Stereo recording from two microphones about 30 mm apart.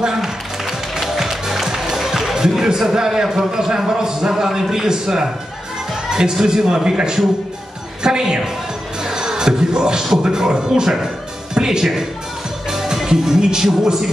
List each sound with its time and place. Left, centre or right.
0.2 s music: centre
3.3 s a man's voice: centre
9.0 s music: centre
10.2 s a man's voice: right